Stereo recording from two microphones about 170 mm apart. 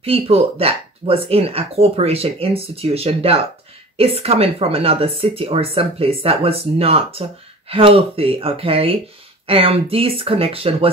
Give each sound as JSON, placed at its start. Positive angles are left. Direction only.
{"t": 0.0, "sound": "speech", "side_deg": -35}